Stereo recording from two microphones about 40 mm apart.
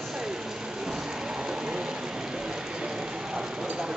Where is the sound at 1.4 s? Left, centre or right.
Centre.